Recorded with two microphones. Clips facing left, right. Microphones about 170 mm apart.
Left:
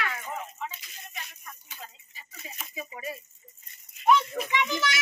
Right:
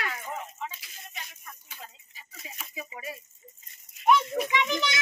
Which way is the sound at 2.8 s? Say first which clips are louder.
Left 2 dB; 5° right (ahead or behind).